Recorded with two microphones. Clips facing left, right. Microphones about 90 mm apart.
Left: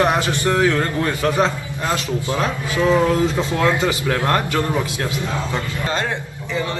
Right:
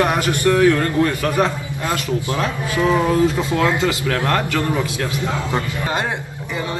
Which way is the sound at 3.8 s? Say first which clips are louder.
Even; 20° left (ahead or behind).